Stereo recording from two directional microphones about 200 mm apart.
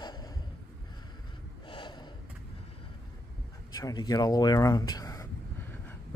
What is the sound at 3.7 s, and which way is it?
Speech, 20° left (ahead or behind).